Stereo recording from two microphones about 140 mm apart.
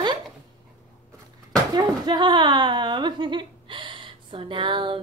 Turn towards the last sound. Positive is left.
turn(degrees=-35)  # may be behind; listen again after turning